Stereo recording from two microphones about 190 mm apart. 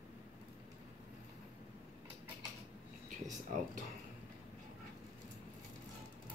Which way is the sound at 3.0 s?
45° right (ahead or behind).